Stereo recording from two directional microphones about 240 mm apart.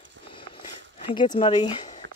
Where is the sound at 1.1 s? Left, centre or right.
Centre.